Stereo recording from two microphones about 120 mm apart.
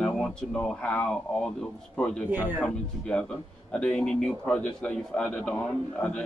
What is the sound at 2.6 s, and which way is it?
Speech, 10° left (ahead or behind).